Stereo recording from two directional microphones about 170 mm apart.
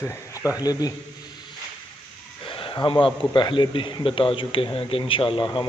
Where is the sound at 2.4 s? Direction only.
30° left (ahead or behind).